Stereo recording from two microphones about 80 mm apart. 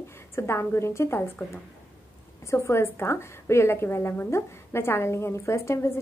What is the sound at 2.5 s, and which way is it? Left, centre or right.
A woman's voice, left.